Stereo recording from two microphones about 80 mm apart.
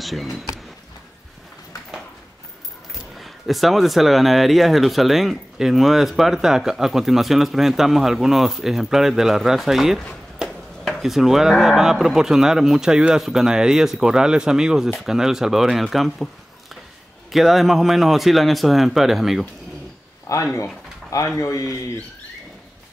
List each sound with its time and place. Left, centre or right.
0.0 s speech: centre
2.9 s speech: centre
10.4 s a sound: centre
10.9 s speech: centre
17.3 s speech: centre
20.3 s a man's voice: left